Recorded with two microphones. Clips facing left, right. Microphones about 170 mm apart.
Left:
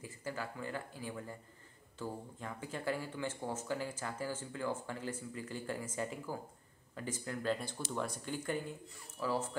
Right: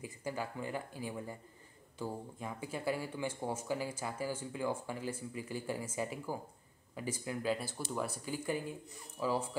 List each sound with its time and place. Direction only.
0.0 s speech: 15° right (ahead or behind)